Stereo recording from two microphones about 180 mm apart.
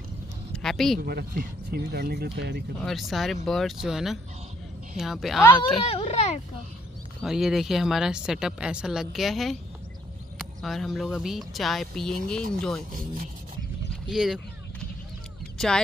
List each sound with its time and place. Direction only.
0.5 s a sound: centre (ahead or behind)
1.0 s speech: 60° right (ahead or behind)
2.8 s speech: centre (ahead or behind)
5.6 s speech: 30° left (ahead or behind)
7.2 s speech: centre (ahead or behind)
14.0 s a sound: centre (ahead or behind)